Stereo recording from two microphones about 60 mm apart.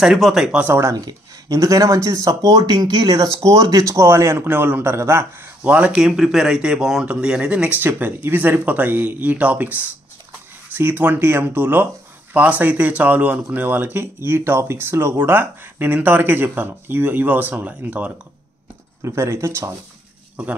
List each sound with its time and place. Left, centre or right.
0.0 s speech: centre
0.7 s speech: right
1.5 s speech: right
4.5 s speech: right
4.9 s speech: right
5.7 s speech: centre
7.8 s speech: right
19.0 s speech: right